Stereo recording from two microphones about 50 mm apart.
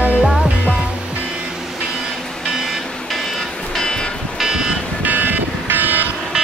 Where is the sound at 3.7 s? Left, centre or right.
Centre.